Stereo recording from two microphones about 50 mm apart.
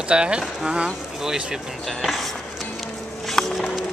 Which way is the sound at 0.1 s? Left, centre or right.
Centre.